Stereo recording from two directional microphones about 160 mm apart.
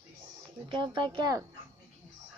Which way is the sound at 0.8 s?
30° right (ahead or behind).